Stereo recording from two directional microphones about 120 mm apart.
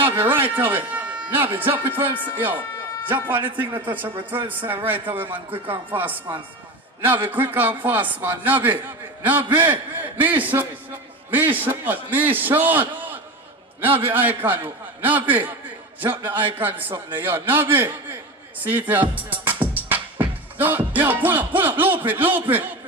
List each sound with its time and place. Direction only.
0.0 s a sound: 15° right (ahead or behind)
0.6 s a man's voice: 15° right (ahead or behind)
5.3 s speech: 45° right (ahead or behind)
5.9 s a man's voice: 15° right (ahead or behind)
18.6 s music: 15° right (ahead or behind)